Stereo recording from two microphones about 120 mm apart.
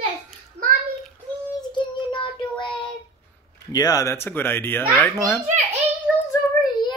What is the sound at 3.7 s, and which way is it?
Speech, 30° left (ahead or behind).